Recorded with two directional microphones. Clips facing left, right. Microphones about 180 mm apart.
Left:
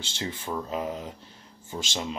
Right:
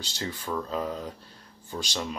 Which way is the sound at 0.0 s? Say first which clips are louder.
Even; 25° left (ahead or behind).